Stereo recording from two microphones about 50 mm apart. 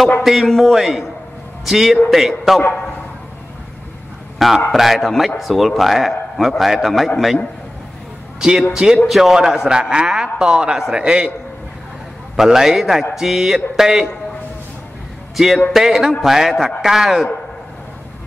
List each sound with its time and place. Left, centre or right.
0.2 s a man's voice: centre
4.4 s a man's voice: centre
8.4 s a man's voice: centre
12.4 s a man's voice: centre
15.3 s a man's voice: centre